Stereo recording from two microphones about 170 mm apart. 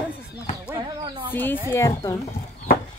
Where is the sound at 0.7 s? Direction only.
25° right (ahead or behind).